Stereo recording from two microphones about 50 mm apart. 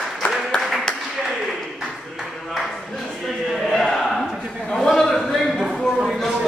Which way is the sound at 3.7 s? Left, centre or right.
Centre.